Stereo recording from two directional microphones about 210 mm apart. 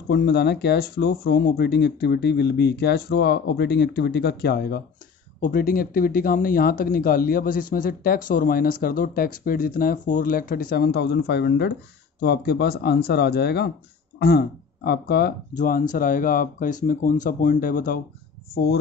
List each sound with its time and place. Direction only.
0.1 s speech: 50° left (ahead or behind)